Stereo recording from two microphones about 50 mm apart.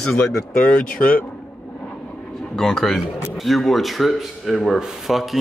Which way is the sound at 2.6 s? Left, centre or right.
Centre.